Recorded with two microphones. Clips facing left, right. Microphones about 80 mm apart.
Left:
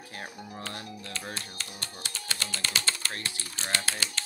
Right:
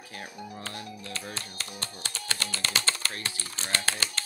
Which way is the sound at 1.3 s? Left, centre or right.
Right.